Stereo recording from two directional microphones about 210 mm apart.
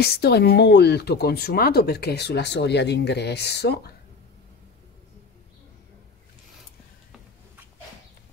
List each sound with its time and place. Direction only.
0.0 s speech: 50° left (ahead or behind)